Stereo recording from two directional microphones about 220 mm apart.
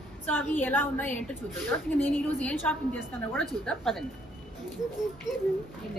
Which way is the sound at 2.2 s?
10° left (ahead or behind).